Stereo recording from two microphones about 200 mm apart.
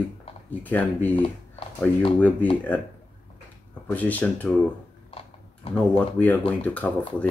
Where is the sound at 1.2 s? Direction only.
25° left (ahead or behind).